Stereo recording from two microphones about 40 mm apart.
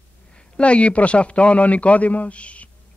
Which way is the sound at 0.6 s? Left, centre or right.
Left.